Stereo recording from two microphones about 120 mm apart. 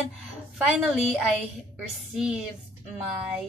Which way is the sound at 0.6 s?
5° right (ahead or behind).